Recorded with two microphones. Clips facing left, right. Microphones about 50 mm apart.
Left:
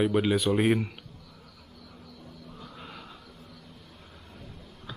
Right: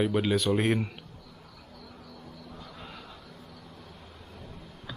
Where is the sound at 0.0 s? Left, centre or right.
Centre.